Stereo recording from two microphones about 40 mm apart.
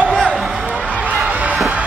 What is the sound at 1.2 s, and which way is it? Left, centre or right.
Music, right.